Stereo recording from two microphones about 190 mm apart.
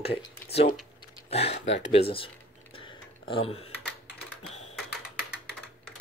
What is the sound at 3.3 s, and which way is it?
Speech, 30° left (ahead or behind).